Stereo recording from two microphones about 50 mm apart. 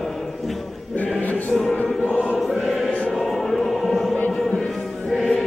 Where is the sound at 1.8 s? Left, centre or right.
Left.